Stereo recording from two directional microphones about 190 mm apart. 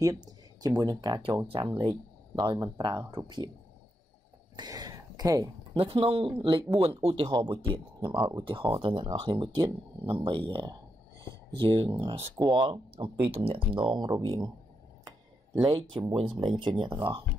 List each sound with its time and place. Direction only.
0.0 s speech: 20° right (ahead or behind)
4.6 s speech: 20° right (ahead or behind)
5.8 s speech: 30° right (ahead or behind)
15.0 s a sound: 20° right (ahead or behind)
16.3 s speech: 25° right (ahead or behind)